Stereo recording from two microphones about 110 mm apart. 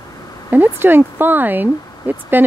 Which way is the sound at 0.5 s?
20° right (ahead or behind).